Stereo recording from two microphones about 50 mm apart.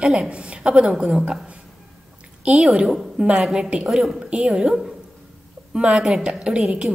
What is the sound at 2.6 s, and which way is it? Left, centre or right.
Speech, centre.